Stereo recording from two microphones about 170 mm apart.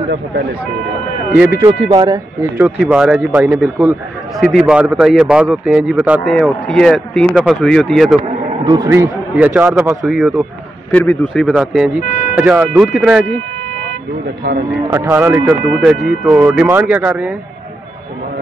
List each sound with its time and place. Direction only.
1.3 s speech: 10° right (ahead or behind)
1.6 s speech: 30° right (ahead or behind)
2.5 s a man's voice: 10° right (ahead or behind)
8.6 s speech: 25° right (ahead or behind)
10.0 s a man's voice: centre (ahead or behind)
14.9 s speech: 10° right (ahead or behind)